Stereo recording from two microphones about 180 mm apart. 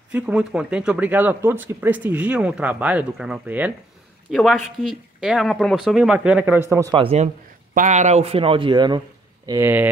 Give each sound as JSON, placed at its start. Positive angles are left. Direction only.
{"t": 0.1, "sound": "speech", "side_deg": -5}
{"t": 6.9, "sound": "a man's voice", "side_deg": -30}
{"t": 7.7, "sound": "a man's voice", "side_deg": -45}
{"t": 9.5, "sound": "speech", "side_deg": -10}